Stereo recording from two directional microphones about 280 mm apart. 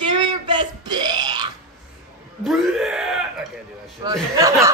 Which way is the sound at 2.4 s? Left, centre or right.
Centre.